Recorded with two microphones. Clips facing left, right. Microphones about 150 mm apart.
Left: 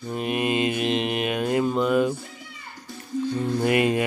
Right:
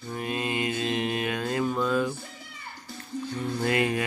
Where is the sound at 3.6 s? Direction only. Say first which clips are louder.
Left 4 dB; 20° left (ahead or behind).